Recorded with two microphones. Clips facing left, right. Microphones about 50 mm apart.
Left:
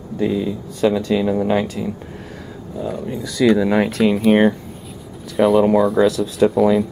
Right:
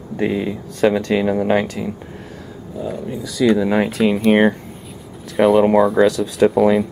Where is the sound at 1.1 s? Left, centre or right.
Centre.